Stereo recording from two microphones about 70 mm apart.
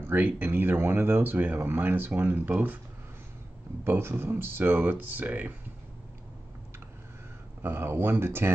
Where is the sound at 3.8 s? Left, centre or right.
Right.